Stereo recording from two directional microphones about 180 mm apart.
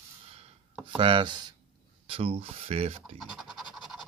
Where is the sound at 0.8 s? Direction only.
30° right (ahead or behind).